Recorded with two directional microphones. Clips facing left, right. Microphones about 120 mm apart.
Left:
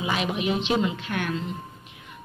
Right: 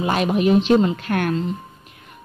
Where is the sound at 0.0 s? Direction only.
45° right (ahead or behind).